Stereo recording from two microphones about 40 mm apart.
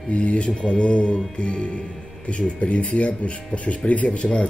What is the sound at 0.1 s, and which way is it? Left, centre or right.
Speech, left.